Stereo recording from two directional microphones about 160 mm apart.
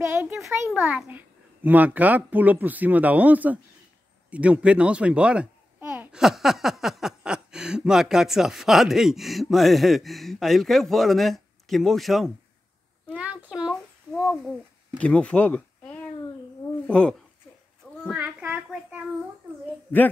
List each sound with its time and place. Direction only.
0.1 s a child's voice: 10° right (ahead or behind)
13.1 s a sound: 10° right (ahead or behind)
14.2 s a child's voice: centre (ahead or behind)
18.0 s child singing: 10° right (ahead or behind)
19.9 s a man's voice: 10° left (ahead or behind)